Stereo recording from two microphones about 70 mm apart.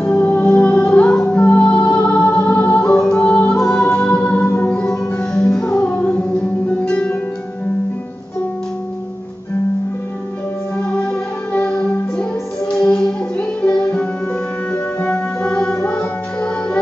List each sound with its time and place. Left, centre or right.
0.0 s music: left
2.9 s music: centre
10.8 s music: centre